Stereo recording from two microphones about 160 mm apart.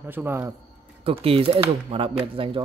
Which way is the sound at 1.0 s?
35° right (ahead or behind).